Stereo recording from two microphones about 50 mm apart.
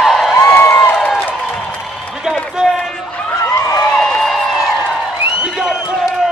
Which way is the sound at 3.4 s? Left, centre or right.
Left.